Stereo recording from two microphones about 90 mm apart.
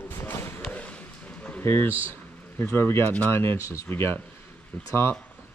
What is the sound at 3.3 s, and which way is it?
Speech, 30° left (ahead or behind).